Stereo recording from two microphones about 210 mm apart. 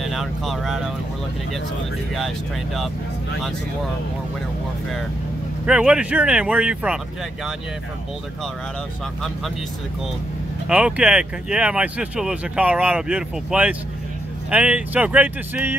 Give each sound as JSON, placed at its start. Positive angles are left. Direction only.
{"t": 0.0, "sound": "speech", "side_deg": 0}
{"t": 2.1, "sound": "speech", "side_deg": 0}
{"t": 5.7, "sound": "speech", "side_deg": -5}
{"t": 10.7, "sound": "speech", "side_deg": -5}